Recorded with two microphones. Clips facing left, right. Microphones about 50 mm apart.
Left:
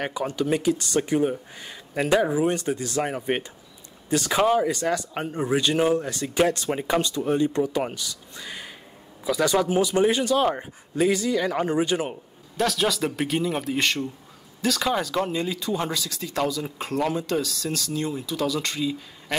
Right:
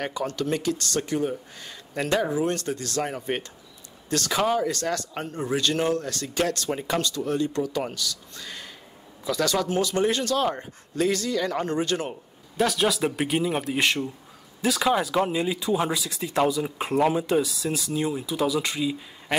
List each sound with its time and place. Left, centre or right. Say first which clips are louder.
0.0 s speech: left 2 dB; centre
12.5 s speech: even; centre